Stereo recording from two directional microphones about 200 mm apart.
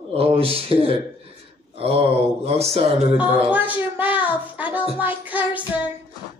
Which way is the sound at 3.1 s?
10° right (ahead or behind).